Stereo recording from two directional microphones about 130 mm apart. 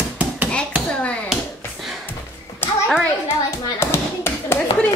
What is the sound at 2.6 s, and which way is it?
Hands, 15° left (ahead or behind).